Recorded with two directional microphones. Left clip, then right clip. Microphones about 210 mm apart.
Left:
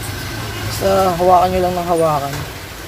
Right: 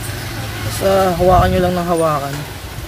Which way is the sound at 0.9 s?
15° right (ahead or behind).